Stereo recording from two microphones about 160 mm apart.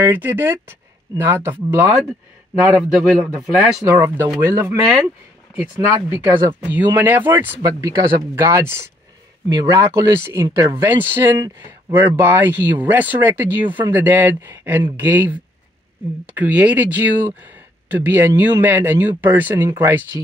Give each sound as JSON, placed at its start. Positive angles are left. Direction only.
{"t": 0.0, "sound": "speech", "side_deg": -10}
{"t": 2.7, "sound": "speech", "side_deg": -5}
{"t": 3.8, "sound": "speech", "side_deg": -15}
{"t": 7.4, "sound": "speech", "side_deg": -20}
{"t": 10.8, "sound": "speech", "side_deg": -10}